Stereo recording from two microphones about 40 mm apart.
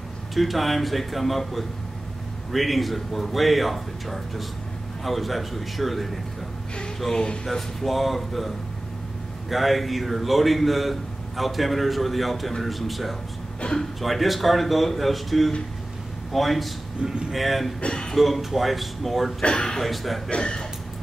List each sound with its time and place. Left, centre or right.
0.3 s a man's voice: centre
7.4 s a man's voice: centre
13.6 s speech: left
14.0 s a man's voice: centre
17.0 s speech: centre
17.3 s a man's voice: centre
17.7 s speech: left
18.1 s a man's voice: centre
19.4 s speech: left
19.7 s a man's voice: centre
20.2 s speech: centre